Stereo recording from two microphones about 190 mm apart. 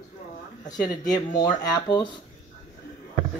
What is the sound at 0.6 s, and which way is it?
Speech, 20° left (ahead or behind).